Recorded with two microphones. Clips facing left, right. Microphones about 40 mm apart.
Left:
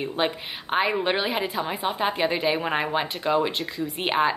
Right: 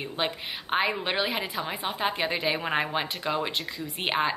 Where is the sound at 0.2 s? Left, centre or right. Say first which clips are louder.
Left 2 dB; centre.